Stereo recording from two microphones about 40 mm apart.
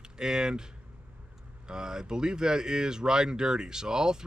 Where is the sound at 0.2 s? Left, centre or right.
Centre.